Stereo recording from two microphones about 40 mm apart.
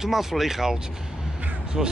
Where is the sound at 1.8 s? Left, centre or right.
Centre.